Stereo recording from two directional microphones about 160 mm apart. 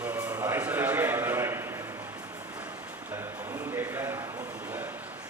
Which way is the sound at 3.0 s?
15° right (ahead or behind).